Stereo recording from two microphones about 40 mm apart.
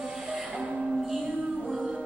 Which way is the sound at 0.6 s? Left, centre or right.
Right.